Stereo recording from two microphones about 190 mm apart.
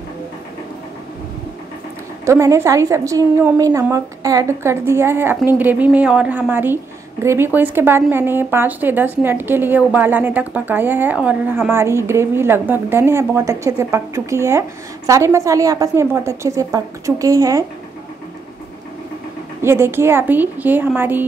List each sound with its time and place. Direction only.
2.2 s a woman's voice: 15° right (ahead or behind)
19.6 s a woman's voice: 15° right (ahead or behind)